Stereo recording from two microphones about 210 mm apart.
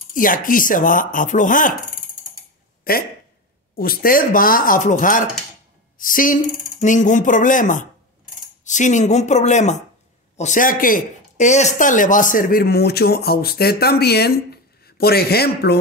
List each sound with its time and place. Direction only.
0.1 s speech: 40° left (ahead or behind)
2.8 s speech: 45° left (ahead or behind)